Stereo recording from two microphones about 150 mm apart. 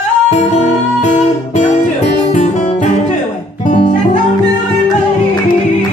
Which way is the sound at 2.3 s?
55° left (ahead or behind).